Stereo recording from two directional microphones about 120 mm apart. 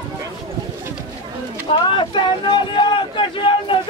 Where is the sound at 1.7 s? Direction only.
45° left (ahead or behind).